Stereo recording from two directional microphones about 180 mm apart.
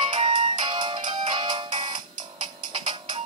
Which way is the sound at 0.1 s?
25° right (ahead or behind).